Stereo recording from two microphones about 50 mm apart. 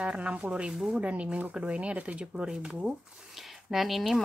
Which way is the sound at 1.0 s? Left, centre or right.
Right.